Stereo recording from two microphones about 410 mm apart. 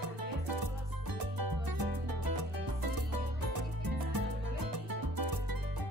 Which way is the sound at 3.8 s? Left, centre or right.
Right.